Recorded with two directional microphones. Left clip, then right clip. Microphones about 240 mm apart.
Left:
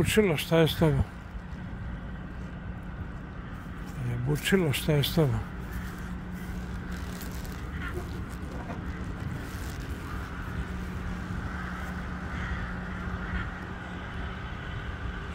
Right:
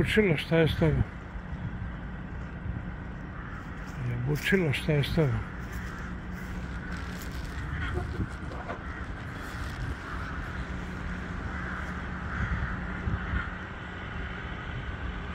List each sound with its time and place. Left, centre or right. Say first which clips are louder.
0.0 s speech: even; centre
4.3 s speech: even; centre